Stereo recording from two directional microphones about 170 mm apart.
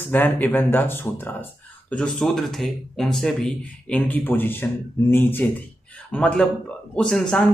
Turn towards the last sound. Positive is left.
turn(degrees=5)  # may be behind; listen again after turning